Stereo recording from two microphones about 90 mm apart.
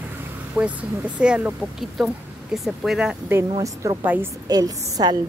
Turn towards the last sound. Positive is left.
turn(degrees=-45)  # may be behind; listen again after turning